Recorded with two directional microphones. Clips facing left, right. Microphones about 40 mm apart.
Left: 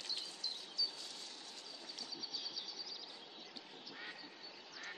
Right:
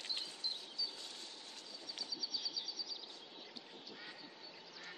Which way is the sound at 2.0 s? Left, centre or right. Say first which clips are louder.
Right 4 dB; left.